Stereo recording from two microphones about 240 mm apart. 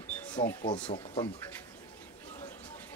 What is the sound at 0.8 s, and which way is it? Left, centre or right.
Speech, centre.